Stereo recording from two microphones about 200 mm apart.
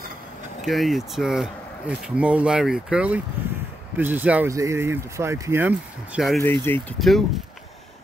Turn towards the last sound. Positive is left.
turn(degrees=0)  # may be behind; listen again after turning